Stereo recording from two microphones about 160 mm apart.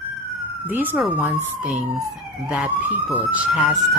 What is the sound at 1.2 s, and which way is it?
Speech, centre (ahead or behind).